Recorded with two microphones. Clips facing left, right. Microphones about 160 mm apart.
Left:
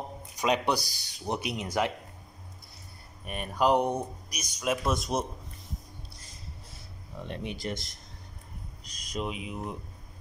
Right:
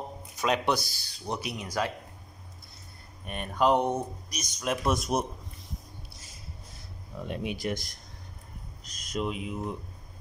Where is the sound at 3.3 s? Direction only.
5° left (ahead or behind).